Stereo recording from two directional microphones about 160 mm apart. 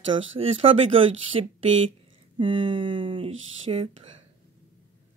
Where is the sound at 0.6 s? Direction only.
35° right (ahead or behind).